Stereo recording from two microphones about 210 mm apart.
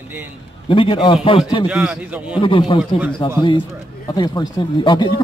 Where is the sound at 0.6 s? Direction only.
25° left (ahead or behind).